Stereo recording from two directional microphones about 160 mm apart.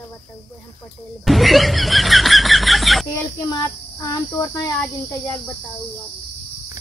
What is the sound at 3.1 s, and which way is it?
Speech, 25° left (ahead or behind).